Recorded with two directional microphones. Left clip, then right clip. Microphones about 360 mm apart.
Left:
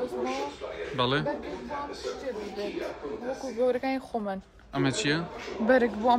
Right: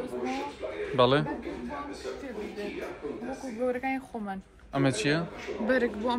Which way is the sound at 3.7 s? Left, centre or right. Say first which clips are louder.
Left 3 dB; left.